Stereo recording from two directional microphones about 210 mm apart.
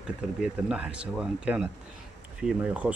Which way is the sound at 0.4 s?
5° right (ahead or behind).